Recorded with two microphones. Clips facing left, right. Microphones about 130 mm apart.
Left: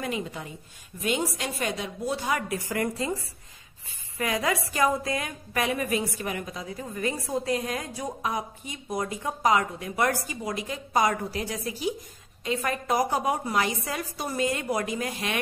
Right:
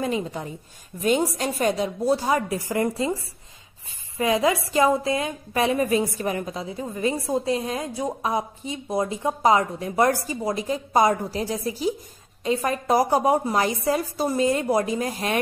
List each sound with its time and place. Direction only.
0.0 s a woman's voice: 30° right (ahead or behind)
4.2 s a woman's voice: 25° right (ahead or behind)